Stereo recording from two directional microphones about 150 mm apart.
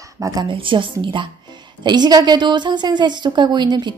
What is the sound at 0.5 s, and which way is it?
A woman's voice, 35° right (ahead or behind).